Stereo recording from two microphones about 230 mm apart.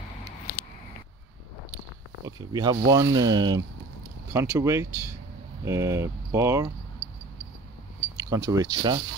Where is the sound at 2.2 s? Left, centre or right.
Centre.